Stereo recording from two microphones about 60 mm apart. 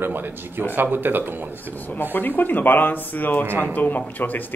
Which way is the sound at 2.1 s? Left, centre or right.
Left.